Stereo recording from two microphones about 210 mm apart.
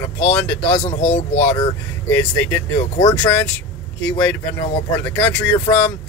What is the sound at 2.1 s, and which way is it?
Speech, 10° left (ahead or behind).